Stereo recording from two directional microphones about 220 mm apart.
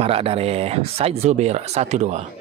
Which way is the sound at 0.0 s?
25° right (ahead or behind).